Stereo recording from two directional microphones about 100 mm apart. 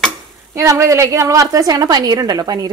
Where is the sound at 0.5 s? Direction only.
30° right (ahead or behind).